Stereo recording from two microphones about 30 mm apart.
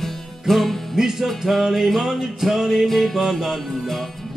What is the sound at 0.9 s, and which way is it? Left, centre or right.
Music, centre.